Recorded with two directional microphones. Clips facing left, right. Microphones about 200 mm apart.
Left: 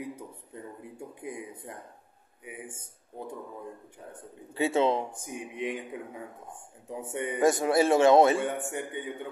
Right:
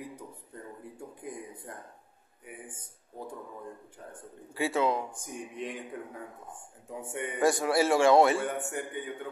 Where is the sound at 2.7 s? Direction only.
25° left (ahead or behind).